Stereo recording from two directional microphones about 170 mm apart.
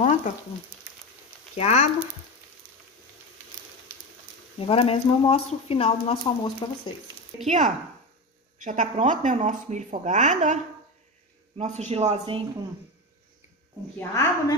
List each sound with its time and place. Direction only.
0.0 s frying: 45° left (ahead or behind)
1.6 s speech: 40° left (ahead or behind)
4.6 s speech: 35° left (ahead or behind)
7.4 s a man's voice: 45° right (ahead or behind)
13.9 s a woman's voice: 20° left (ahead or behind)